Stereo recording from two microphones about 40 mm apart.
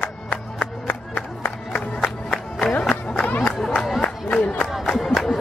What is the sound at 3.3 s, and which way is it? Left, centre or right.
Crowd, left.